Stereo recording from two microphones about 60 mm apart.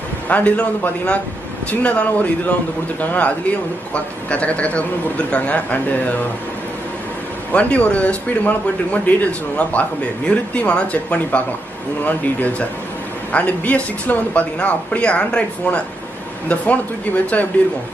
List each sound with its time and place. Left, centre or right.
0.3 s speech: left
7.5 s speech: left